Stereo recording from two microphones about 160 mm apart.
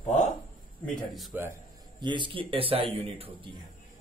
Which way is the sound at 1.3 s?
10° right (ahead or behind).